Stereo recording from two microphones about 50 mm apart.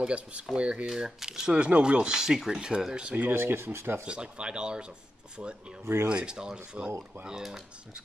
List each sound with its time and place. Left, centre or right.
0.0 s speech: right
0.8 s speech: centre
3.3 s speech: right
4.0 s speech: right